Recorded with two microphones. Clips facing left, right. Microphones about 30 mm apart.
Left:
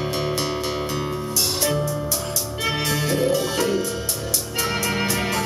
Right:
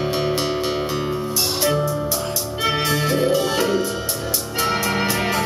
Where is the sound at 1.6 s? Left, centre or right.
Centre.